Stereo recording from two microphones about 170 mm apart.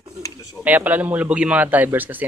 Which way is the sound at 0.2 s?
20° left (ahead or behind).